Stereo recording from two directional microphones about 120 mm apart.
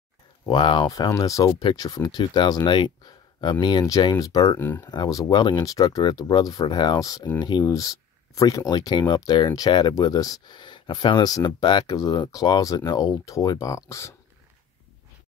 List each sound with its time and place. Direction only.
0.5 s speech: 40° left (ahead or behind)
4.6 s speech: 20° left (ahead or behind)
4.8 s speech: 35° left (ahead or behind)